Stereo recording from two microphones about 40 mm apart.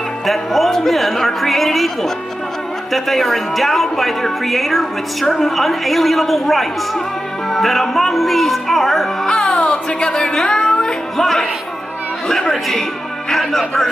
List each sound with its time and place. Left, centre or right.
0.3 s a woman's voice: centre
9.5 s music: left
9.8 s speech: centre
11.1 s a man's voice: centre